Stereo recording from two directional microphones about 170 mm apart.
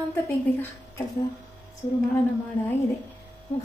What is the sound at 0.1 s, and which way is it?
Speech, 15° left (ahead or behind).